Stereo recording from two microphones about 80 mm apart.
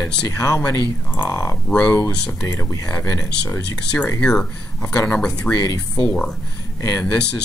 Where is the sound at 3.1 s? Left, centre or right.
Left.